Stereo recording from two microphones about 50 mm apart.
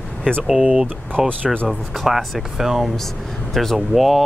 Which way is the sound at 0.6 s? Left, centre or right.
Right.